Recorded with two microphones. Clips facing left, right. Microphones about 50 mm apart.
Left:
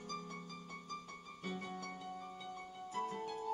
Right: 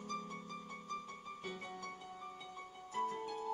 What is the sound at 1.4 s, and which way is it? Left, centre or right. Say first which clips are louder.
Music: left 3 dB; right.